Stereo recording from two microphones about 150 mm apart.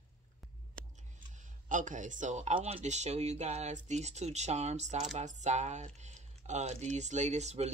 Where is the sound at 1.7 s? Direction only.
60° right (ahead or behind).